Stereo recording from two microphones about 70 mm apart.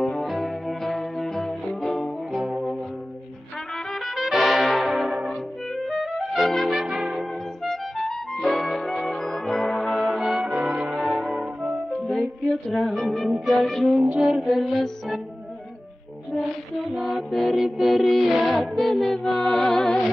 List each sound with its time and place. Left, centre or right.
0.0 s music: centre
4.0 s brass instrument: centre
5.9 s music: centre
12.1 s music: centre
13.9 s music: centre
14.2 s music: centre
16.9 s mantra: centre
17.6 s music: centre